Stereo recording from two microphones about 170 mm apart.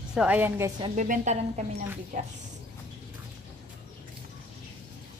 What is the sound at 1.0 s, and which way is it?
Speech, 45° right (ahead or behind).